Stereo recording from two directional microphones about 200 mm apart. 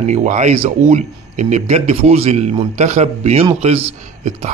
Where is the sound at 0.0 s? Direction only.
35° right (ahead or behind).